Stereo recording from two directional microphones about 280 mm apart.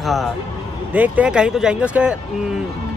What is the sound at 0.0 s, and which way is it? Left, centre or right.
Speech, centre.